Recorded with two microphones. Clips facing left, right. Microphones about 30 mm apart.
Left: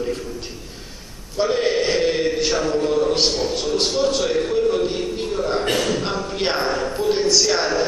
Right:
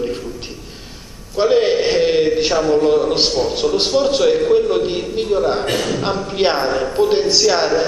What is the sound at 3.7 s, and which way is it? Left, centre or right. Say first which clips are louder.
A man's voice: right 3 dB; centre.